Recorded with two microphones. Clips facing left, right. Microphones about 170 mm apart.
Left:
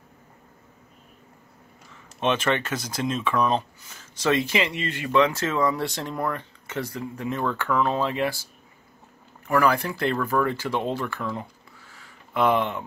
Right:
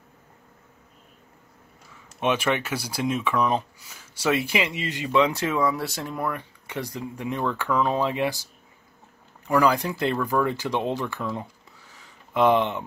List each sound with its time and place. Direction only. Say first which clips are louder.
2.1 s speech: even; 10° right (ahead or behind)
9.5 s speech: right 1 dB; 15° right (ahead or behind)
11.3 s a sound: right 1 dB; 20° right (ahead or behind)